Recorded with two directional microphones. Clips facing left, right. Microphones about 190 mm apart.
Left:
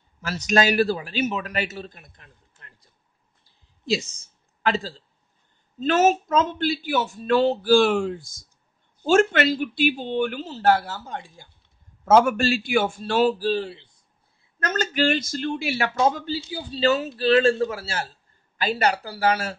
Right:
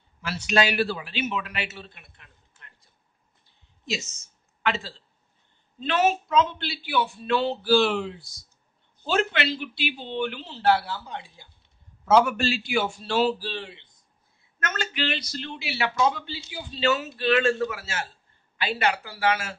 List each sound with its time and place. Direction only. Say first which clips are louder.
0.2 s a man's voice: left 3 dB; 45° left (ahead or behind)
3.4 s a sound: left 8 dB; 35° left (ahead or behind)
5.8 s speech: left 4 dB; 45° left (ahead or behind)